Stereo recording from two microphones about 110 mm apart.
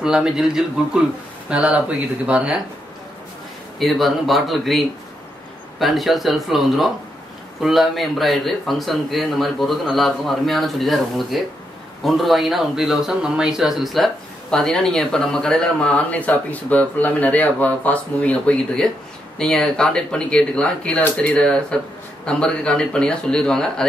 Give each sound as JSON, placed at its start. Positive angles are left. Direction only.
{"t": 0.0, "sound": "a man's voice", "side_deg": -5}
{"t": 3.8, "sound": "a man's voice", "side_deg": 0}